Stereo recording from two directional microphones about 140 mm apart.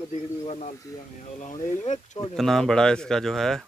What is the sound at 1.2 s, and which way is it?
Speech, 60° left (ahead or behind).